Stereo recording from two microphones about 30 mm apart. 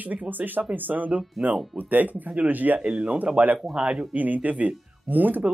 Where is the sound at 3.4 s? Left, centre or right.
Right.